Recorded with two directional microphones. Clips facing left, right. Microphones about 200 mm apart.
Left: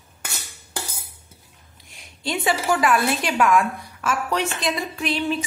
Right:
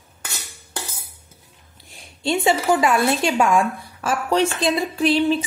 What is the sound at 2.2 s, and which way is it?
A woman's voice, 25° right (ahead or behind).